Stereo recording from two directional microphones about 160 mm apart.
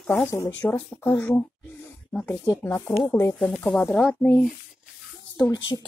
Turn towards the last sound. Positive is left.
turn(degrees=25)  # may be behind; listen again after turning